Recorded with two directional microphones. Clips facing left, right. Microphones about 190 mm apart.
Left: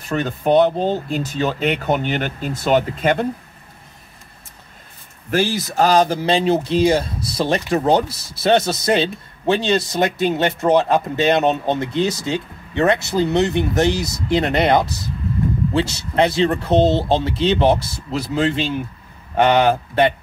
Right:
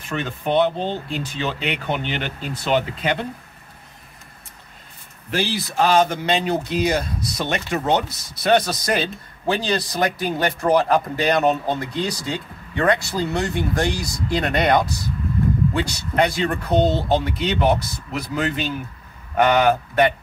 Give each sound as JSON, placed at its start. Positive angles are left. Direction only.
{"t": 0.1, "sound": "speech", "side_deg": 40}
{"t": 5.3, "sound": "speech", "side_deg": 45}